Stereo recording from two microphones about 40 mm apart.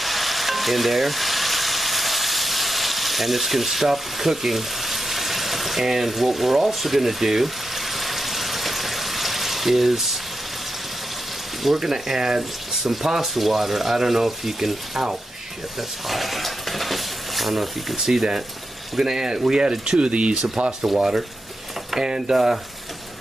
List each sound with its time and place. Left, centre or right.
0.0 s frying: centre
11.6 s speech: centre
16.1 s speech: centre
17.9 s speech: centre
20.0 s speech: right